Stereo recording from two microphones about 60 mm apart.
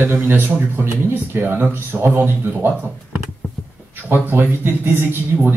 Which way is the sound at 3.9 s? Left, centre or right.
Right.